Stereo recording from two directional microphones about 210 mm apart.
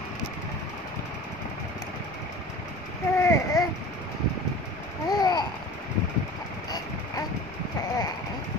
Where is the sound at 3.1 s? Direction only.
15° left (ahead or behind).